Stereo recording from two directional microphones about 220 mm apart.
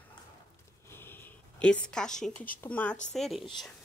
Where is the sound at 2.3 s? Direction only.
40° left (ahead or behind).